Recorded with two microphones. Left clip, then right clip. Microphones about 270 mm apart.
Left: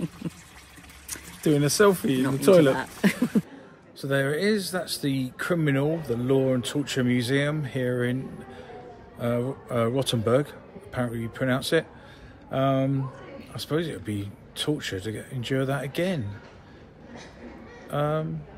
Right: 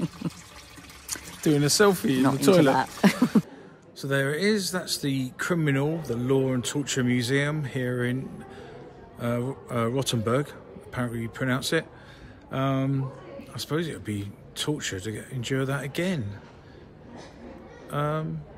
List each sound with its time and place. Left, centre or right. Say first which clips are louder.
1.4 s speech: left 1 dB; centre
2.7 s speech: right 3 dB; right
4.0 s speech: left 1 dB; centre
9.2 s speech: left 2 dB; centre
17.8 s a man's voice: left 2 dB; centre